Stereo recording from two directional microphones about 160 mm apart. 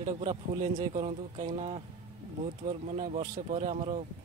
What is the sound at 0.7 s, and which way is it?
Speech, 45° right (ahead or behind).